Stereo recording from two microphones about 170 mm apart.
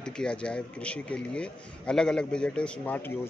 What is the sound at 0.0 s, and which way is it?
A man's voice, 5° left (ahead or behind).